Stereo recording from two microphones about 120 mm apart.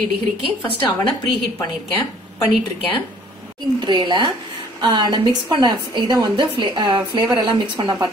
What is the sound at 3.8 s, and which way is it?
A woman's voice, 40° right (ahead or behind).